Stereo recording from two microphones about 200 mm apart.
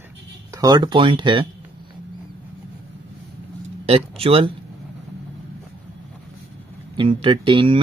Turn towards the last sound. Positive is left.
turn(degrees=-25)  # may be behind; listen again after turning